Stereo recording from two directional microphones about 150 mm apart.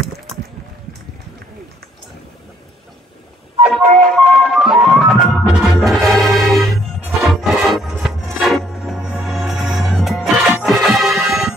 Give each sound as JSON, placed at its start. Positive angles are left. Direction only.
{"t": 3.7, "sound": "music", "side_deg": 0}